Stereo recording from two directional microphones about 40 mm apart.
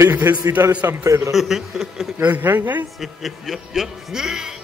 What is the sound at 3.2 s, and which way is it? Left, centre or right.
A man's voice, centre.